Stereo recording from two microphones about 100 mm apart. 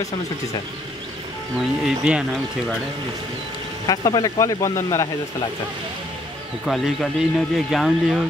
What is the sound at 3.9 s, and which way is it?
Speech, 45° left (ahead or behind).